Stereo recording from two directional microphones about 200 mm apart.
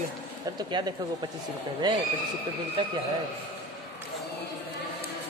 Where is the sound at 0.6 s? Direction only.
20° right (ahead or behind).